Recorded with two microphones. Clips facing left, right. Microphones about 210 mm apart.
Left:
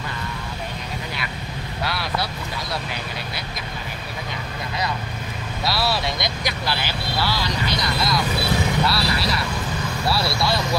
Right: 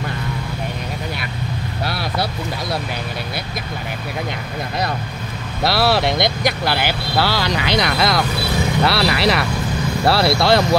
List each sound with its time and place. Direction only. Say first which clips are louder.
5.6 s speech: right 7 dB; 65° right (ahead or behind)